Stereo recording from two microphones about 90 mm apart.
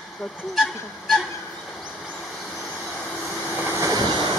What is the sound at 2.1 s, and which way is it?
Vehicle, 5° left (ahead or behind).